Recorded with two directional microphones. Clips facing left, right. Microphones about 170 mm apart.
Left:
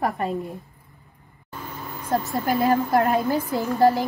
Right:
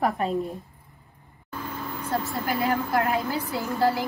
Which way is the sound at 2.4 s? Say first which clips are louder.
Left 6 dB; 40° left (ahead or behind).